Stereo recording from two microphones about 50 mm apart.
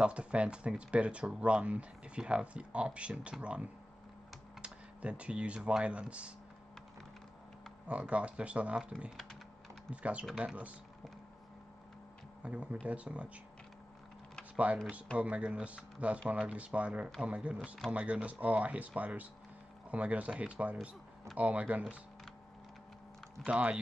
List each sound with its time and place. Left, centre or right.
0.0 s speech: right
7.9 s speech: right
12.4 s speech: right
15.1 s speech: right
23.4 s speech: right